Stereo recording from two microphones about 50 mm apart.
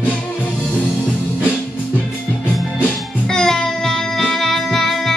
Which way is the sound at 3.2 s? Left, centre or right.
Centre.